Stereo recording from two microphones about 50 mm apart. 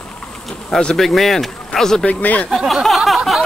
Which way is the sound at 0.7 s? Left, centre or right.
Centre.